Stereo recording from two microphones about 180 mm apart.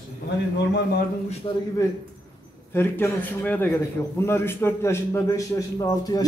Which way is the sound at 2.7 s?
10° left (ahead or behind).